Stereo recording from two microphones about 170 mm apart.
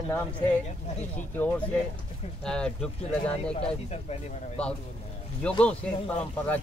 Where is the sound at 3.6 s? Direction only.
40° left (ahead or behind).